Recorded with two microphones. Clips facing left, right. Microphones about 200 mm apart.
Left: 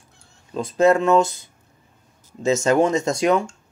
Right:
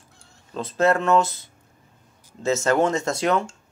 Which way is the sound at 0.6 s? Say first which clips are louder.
Left 4 dB; 15° left (ahead or behind).